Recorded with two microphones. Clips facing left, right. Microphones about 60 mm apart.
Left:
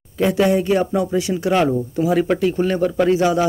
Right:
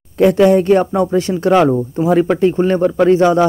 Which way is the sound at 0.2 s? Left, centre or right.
Right.